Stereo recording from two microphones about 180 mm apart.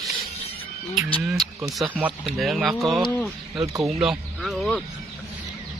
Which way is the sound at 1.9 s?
5° right (ahead or behind).